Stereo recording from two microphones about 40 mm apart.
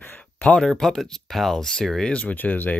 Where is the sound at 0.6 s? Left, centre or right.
Centre.